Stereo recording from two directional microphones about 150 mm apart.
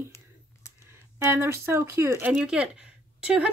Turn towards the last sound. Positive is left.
turn(degrees=-5)  # may be behind; listen again after turning